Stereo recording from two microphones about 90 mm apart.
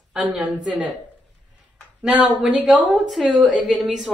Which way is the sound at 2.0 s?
15° right (ahead or behind).